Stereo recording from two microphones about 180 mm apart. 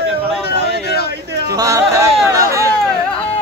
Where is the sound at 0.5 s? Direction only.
60° left (ahead or behind).